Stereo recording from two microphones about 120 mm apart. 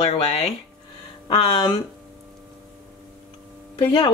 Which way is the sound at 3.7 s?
45° left (ahead or behind).